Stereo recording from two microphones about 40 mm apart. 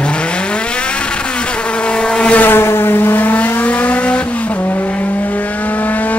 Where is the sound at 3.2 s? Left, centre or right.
Left.